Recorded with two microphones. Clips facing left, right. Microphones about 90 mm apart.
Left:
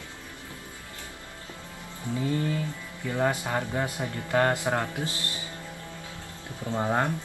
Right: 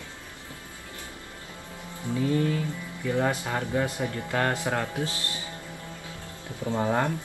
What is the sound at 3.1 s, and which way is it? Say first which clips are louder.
Speech: left 1 dB; 15° left (ahead or behind).